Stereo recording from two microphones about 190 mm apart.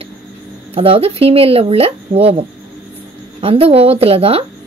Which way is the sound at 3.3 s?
30° right (ahead or behind).